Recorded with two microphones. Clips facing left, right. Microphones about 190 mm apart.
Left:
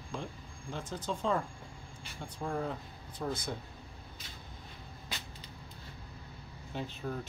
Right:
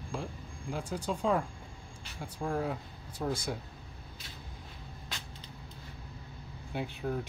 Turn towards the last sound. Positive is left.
turn(degrees=-10)  # may be behind; listen again after turning